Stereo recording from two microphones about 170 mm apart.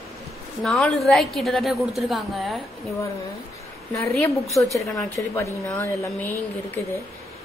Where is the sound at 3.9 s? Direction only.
15° left (ahead or behind).